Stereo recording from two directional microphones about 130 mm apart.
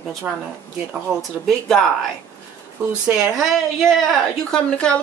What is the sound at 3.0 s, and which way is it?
A woman's voice, centre (ahead or behind).